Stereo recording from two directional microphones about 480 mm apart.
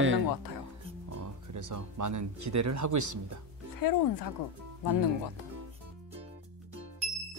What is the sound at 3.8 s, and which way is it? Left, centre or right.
Speech, left.